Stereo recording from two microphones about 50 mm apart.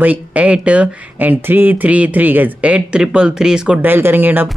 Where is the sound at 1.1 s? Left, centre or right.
Right.